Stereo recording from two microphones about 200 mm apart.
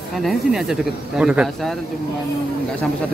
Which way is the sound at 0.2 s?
Centre (ahead or behind).